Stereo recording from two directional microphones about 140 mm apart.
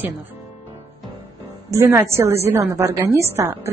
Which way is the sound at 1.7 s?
20° right (ahead or behind).